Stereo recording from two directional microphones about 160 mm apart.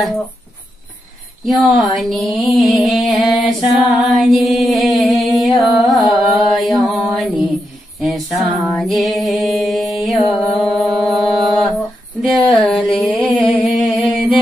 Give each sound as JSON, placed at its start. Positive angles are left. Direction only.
{"t": 1.6, "sound": "music", "side_deg": 0}
{"t": 8.7, "sound": "music", "side_deg": 0}